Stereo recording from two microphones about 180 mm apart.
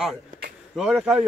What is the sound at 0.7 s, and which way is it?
Speech, 5° right (ahead or behind).